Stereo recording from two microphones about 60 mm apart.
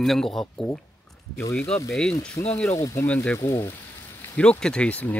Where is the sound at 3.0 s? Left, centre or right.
Left.